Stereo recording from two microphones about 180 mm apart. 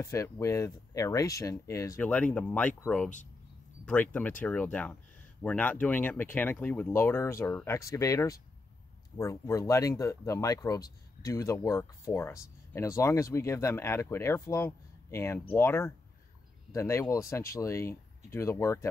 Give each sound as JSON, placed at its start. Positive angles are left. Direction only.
{"t": 0.0, "sound": "speech", "side_deg": 15}